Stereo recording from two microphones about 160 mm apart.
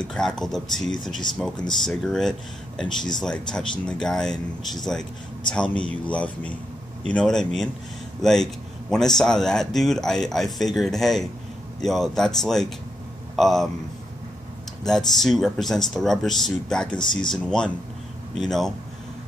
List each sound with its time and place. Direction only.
0.0 s speech: 5° left (ahead or behind)
14.8 s speech: 5° left (ahead or behind)